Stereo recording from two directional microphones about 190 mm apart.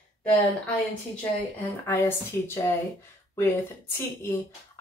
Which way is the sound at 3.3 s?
15° left (ahead or behind).